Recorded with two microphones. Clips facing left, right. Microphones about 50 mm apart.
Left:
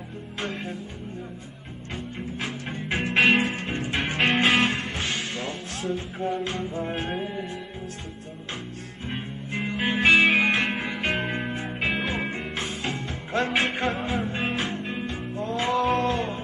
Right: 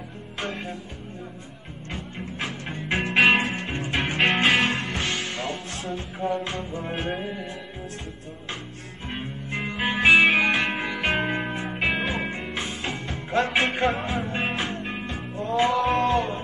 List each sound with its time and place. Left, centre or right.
0.4 s speech: centre
1.9 s music: centre
9.1 s music: centre